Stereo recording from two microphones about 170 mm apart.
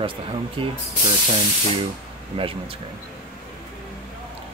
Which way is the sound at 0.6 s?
30° right (ahead or behind).